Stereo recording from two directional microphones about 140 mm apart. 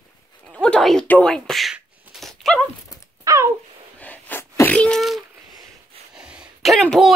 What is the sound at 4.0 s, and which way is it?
Sneeze, 10° left (ahead or behind).